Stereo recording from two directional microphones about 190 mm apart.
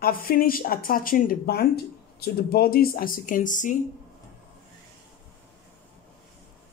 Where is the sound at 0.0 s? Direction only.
50° left (ahead or behind).